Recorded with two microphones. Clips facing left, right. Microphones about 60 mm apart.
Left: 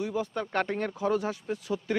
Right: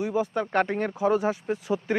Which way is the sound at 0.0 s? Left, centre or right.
Centre.